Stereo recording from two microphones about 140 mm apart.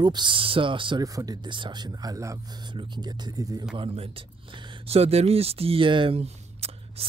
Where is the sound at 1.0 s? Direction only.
25° right (ahead or behind).